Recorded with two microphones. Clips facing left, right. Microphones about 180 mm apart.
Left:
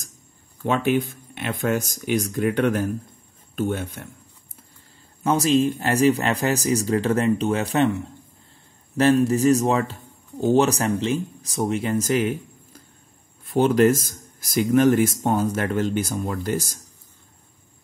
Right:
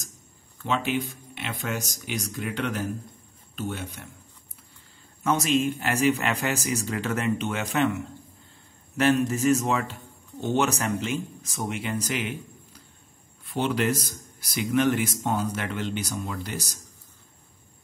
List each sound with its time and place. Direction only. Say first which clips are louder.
0.7 s a man's voice: left 6 dB; 50° left (ahead or behind)
5.2 s a man's voice: left 4 dB; 35° left (ahead or behind); by 16.8 s 50° left (ahead or behind)